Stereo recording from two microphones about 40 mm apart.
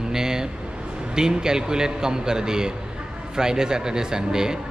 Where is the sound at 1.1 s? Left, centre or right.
Centre.